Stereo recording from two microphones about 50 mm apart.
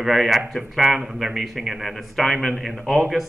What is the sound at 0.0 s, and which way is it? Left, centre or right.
Speech, centre.